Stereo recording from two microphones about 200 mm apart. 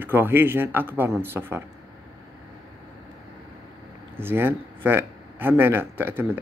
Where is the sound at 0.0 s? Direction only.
10° right (ahead or behind).